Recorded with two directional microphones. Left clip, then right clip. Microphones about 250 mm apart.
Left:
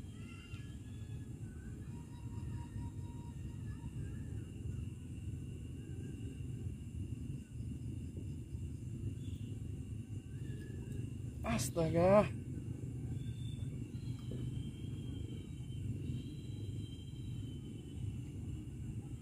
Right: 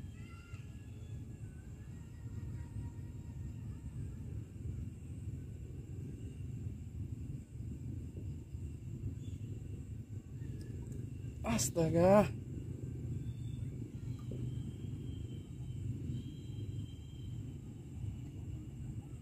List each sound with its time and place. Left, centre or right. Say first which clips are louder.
11.4 s speech: right 2 dB; right